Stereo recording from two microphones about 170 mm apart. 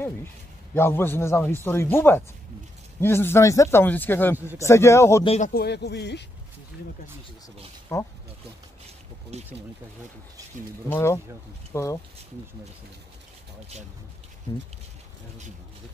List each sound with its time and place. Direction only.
0.7 s a man's voice: 15° left (ahead or behind)
5.2 s speech: 40° left (ahead or behind)
5.5 s speech: 75° left (ahead or behind)
7.9 s speech: 20° left (ahead or behind)
9.3 s speech: 40° right (ahead or behind)
10.9 s a man's voice: 15° left (ahead or behind)